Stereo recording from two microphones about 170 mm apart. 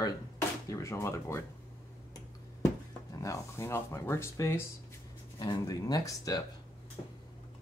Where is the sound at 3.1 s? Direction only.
20° left (ahead or behind).